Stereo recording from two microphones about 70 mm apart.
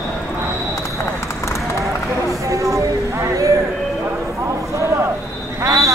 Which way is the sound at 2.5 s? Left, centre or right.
Right.